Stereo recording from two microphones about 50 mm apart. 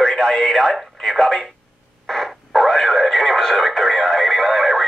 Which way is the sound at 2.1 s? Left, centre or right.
Centre.